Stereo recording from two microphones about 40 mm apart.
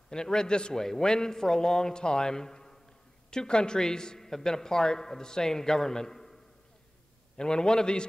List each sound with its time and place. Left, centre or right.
0.1 s a man's voice: centre
7.3 s a man's voice: centre